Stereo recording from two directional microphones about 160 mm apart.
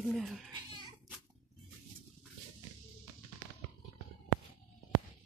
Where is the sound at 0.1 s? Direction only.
Centre (ahead or behind).